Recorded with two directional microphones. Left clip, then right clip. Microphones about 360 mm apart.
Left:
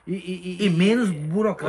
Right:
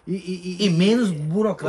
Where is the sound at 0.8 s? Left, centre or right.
Centre.